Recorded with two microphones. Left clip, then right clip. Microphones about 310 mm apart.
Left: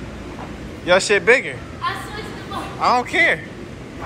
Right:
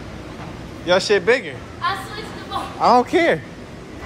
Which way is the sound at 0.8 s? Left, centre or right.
Centre.